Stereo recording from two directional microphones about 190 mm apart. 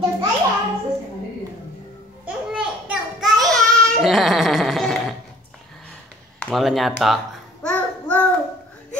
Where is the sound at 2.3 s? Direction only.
5° right (ahead or behind).